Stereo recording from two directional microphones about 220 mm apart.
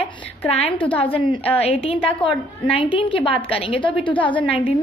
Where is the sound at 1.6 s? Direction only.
25° left (ahead or behind).